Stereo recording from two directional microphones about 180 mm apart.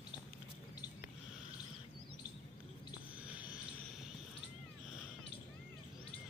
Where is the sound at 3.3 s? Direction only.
5° right (ahead or behind).